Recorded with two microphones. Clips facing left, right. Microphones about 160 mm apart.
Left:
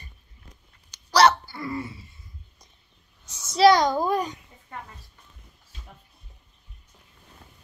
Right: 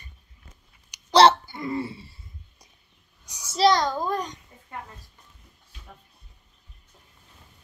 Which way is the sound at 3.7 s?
10° left (ahead or behind).